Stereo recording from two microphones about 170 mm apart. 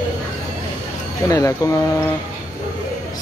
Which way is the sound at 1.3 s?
20° left (ahead or behind).